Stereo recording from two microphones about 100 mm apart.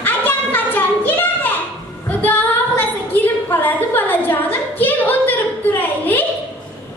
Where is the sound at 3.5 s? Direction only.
20° left (ahead or behind).